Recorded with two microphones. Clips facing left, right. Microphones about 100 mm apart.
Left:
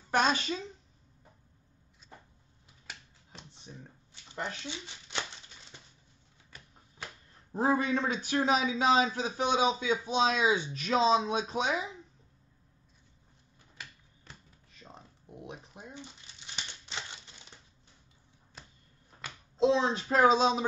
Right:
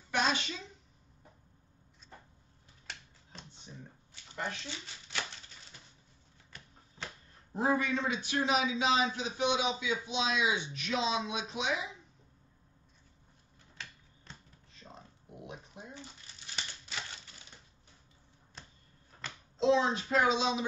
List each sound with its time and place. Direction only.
0.1 s speech: 40° left (ahead or behind)
4.6 s speech: 20° left (ahead or behind)
5.7 s bird: 25° left (ahead or behind)
7.5 s speech: 35° left (ahead or behind)
7.9 s speech: 45° left (ahead or behind)
15.3 s a sound: 20° left (ahead or behind)
16.8 s typewriter: 25° left (ahead or behind)
19.6 s speech: 30° left (ahead or behind)